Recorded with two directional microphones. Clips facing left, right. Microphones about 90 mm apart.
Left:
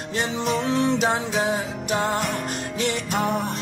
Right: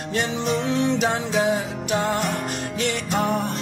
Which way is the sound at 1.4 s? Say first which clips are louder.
Right 2 dB; 30° left (ahead or behind).